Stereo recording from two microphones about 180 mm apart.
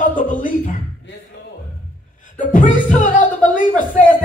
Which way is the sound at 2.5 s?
45° left (ahead or behind).